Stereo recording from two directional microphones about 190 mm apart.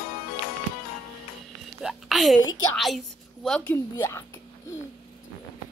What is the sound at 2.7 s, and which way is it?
A woman's voice, centre (ahead or behind).